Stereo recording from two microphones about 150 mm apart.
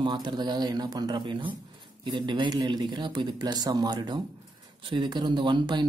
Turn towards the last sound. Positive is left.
turn(degrees=-30)  # may be behind; listen again after turning